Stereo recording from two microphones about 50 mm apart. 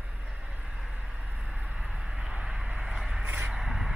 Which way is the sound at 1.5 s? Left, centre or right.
Centre.